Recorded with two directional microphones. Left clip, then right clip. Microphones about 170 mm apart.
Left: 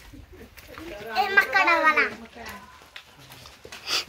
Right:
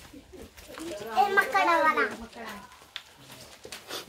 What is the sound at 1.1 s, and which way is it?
Speech, 25° left (ahead or behind).